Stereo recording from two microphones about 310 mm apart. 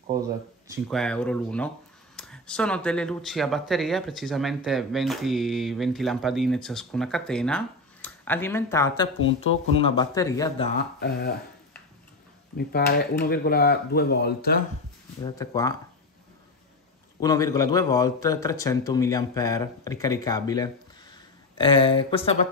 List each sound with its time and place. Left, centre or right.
0.8 s a man's voice: centre
11.0 s speech: left
12.5 s speech: left
15.2 s a man's voice: centre
17.2 s a man's voice: centre